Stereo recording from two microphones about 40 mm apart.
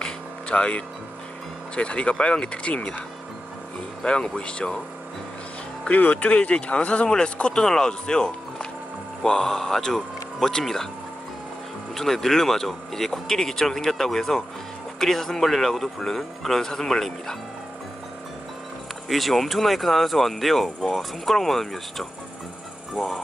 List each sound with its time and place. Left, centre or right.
0.0 s music: left
1.8 s speech: left
4.0 s speech: left
5.9 s speech: left
7.5 s speech: centre
11.9 s speech: centre
19.0 s speech: centre